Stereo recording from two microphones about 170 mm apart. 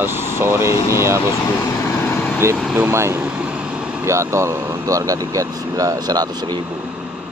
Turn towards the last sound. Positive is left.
turn(degrees=-25)  # may be behind; listen again after turning